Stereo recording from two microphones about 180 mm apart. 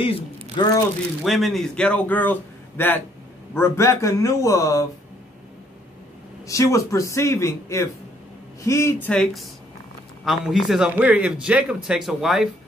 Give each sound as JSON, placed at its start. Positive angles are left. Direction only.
{"t": 0.0, "sound": "speech", "side_deg": 25}
{"t": 1.2, "sound": "a man's voice", "side_deg": 0}
{"t": 6.4, "sound": "a man's voice", "side_deg": 15}
{"t": 9.1, "sound": "speech", "side_deg": 0}